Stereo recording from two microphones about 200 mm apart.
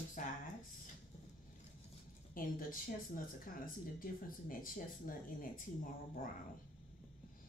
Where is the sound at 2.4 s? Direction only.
45° left (ahead or behind).